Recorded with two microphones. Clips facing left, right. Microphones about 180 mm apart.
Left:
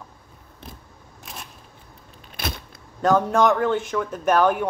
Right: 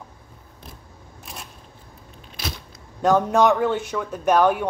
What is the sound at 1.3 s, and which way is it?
Single-lens reflex camera, centre (ahead or behind).